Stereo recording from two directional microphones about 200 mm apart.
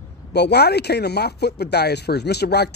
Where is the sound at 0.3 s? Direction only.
55° left (ahead or behind).